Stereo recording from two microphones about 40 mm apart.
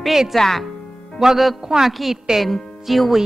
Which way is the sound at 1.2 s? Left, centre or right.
Centre.